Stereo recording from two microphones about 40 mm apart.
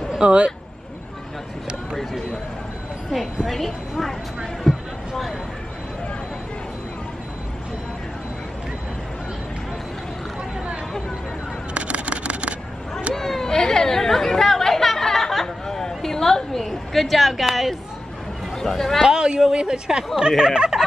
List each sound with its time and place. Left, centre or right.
0.2 s speech: right
3.4 s a woman's voice: centre
4.6 s a sound: centre
11.7 s a sound: right
13.1 s chatter: centre
16.6 s a woman's voice: centre
18.6 s speech: centre
19.0 s speech: centre